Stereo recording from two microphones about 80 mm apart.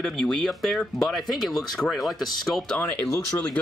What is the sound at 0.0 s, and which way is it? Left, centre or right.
Speech, centre.